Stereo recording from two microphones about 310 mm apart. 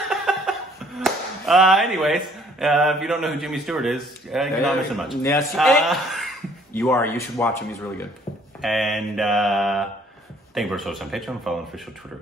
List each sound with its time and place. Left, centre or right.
0.1 s speech: centre
8.5 s mantra: centre